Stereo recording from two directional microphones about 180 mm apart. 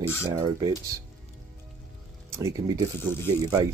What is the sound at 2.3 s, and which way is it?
Speech, 15° right (ahead or behind).